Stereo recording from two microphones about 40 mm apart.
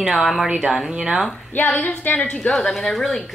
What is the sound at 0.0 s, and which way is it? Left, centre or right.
Speech, centre.